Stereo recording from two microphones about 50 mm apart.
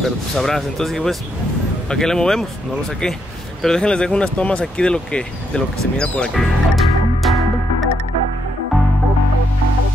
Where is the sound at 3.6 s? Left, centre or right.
Centre.